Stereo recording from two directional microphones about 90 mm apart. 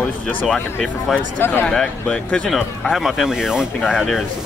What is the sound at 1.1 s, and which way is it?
Speech, 20° left (ahead or behind).